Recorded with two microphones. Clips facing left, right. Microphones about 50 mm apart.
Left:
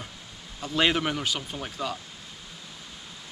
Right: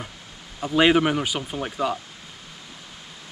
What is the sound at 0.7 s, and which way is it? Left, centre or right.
Speech, centre.